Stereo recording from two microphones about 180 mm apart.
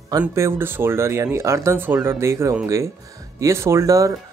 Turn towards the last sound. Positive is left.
turn(degrees=-20)  # may be behind; listen again after turning